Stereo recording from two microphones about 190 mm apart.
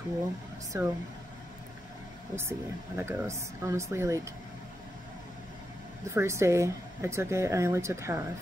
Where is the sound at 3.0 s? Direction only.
15° right (ahead or behind).